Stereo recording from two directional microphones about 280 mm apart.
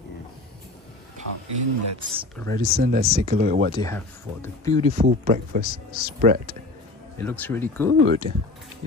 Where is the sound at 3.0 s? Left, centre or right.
Right.